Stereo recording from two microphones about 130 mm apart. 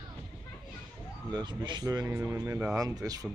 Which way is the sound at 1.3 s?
35° right (ahead or behind).